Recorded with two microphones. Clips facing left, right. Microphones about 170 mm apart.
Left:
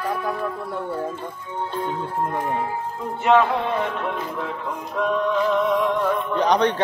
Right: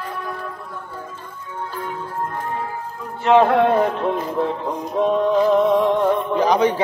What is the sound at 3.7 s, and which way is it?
Music, 35° right (ahead or behind).